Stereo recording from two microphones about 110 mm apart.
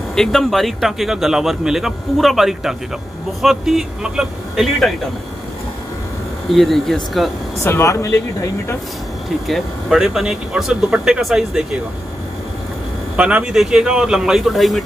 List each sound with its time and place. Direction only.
0.1 s speech: 5° left (ahead or behind)
6.5 s speech: centre (ahead or behind)
7.6 s speech: 25° left (ahead or behind)
9.5 s speech: centre (ahead or behind)
13.1 s speech: 10° right (ahead or behind)